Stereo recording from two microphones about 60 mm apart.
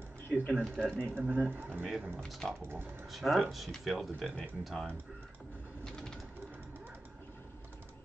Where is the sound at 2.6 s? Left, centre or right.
Right.